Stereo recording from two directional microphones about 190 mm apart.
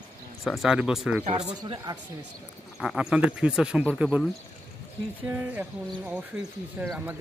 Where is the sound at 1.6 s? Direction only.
20° right (ahead or behind).